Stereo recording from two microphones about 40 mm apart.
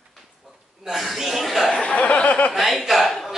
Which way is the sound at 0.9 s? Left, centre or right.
Centre.